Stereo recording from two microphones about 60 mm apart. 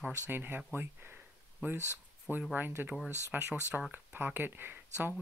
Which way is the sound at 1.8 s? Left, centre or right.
Left.